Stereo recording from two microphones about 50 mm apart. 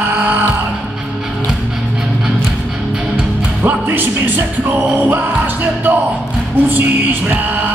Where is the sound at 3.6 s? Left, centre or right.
Right.